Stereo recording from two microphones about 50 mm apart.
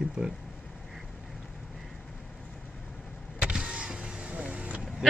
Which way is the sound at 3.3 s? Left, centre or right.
Centre.